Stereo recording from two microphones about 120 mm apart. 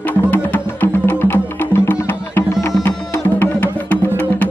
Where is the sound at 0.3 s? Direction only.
15° left (ahead or behind).